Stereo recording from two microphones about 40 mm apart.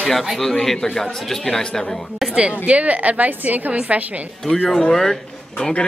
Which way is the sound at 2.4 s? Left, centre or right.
Right.